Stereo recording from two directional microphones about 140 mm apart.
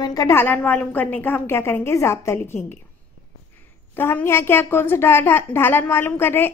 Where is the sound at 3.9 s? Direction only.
15° left (ahead or behind).